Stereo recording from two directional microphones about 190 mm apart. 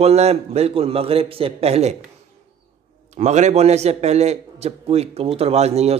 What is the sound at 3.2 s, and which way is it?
A man's voice, 35° right (ahead or behind).